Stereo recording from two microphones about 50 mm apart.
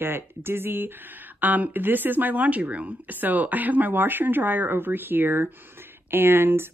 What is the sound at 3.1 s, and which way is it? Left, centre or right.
Speech, right.